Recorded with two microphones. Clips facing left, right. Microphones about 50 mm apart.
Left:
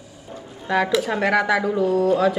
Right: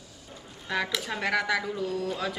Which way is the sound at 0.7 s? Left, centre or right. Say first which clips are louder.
Left 10 dB; centre.